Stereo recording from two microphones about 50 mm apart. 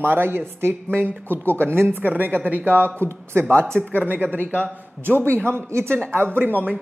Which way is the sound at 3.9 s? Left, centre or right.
Right.